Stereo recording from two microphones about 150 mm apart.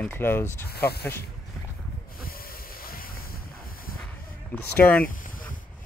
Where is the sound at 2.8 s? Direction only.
75° left (ahead or behind).